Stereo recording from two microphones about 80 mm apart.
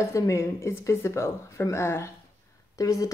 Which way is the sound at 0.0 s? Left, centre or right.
Left.